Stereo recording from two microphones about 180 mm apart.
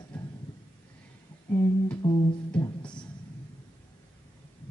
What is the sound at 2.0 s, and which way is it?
Music, 30° left (ahead or behind).